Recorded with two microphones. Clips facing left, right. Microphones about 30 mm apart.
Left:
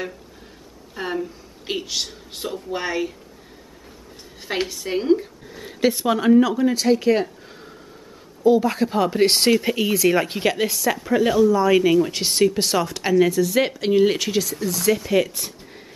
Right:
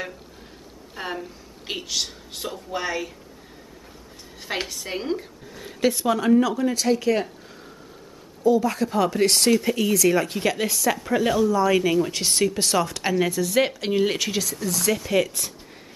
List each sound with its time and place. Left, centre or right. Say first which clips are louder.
0.9 s a woman's voice: left 5 dB; centre
4.4 s a woman's voice: left 3 dB; centre
10.6 s speech: left 2 dB; centre